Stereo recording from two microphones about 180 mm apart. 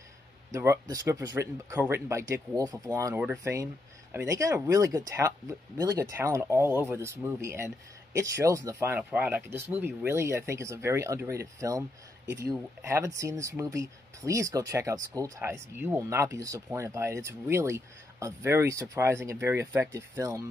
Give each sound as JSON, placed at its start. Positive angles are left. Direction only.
{"t": 0.5, "sound": "speech", "side_deg": -15}